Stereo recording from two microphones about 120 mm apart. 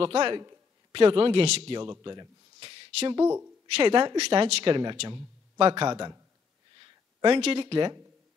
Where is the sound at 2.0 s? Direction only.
35° right (ahead or behind).